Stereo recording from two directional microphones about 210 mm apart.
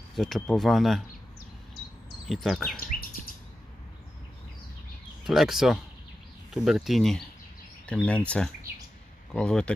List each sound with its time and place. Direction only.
0.1 s speech: centre (ahead or behind)
2.2 s speech: centre (ahead or behind)
2.8 s bird vocalization: 45° left (ahead or behind)
5.2 s speech: centre (ahead or behind)
9.3 s speech: 5° left (ahead or behind)